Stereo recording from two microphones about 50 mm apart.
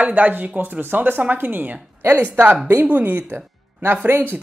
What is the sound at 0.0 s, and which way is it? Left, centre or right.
Speech, right.